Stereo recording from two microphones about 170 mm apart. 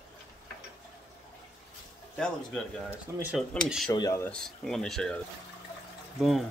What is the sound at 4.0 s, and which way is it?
Speech, 15° left (ahead or behind).